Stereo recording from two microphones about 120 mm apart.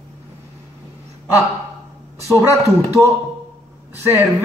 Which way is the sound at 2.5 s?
25° left (ahead or behind).